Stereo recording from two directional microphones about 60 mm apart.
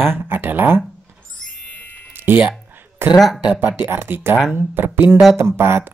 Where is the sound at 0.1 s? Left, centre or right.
Right.